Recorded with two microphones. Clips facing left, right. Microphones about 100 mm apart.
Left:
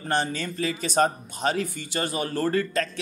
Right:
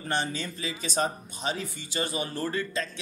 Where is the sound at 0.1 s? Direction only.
45° left (ahead or behind).